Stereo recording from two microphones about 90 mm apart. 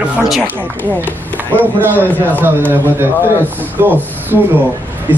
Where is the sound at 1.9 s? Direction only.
20° left (ahead or behind).